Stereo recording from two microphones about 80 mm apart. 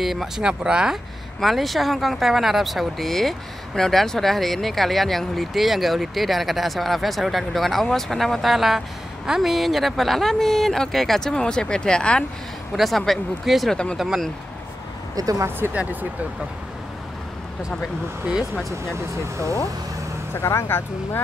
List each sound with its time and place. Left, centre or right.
0.0 s speech: centre
1.4 s speech: centre
12.7 s speech: centre
15.1 s speech: right
15.7 s speech: centre
20.4 s speech: left